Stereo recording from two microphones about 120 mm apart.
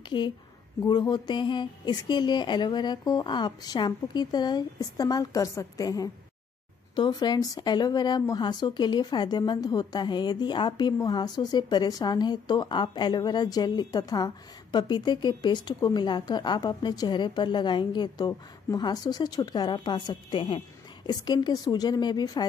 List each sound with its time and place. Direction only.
0.7 s speech: 35° left (ahead or behind)
21.1 s speech: 35° left (ahead or behind)